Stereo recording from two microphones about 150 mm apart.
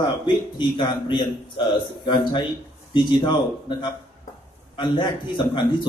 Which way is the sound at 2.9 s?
30° left (ahead or behind).